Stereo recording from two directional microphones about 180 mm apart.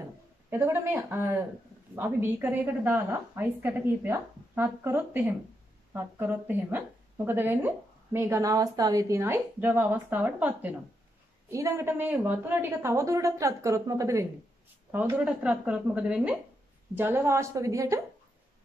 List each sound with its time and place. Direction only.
0.5 s a woman's voice: 10° right (ahead or behind)